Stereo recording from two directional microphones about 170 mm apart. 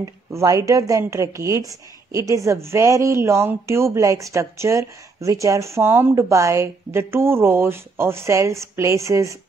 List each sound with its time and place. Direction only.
0.0 s a woman's voice: 20° right (ahead or behind)